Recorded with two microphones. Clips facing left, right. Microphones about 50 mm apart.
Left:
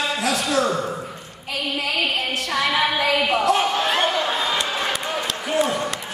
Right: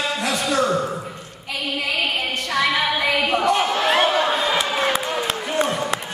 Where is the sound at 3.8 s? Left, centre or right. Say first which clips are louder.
Right 3 dB; right.